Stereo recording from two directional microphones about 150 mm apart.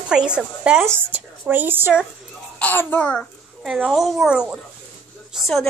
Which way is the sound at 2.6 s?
10° left (ahead or behind).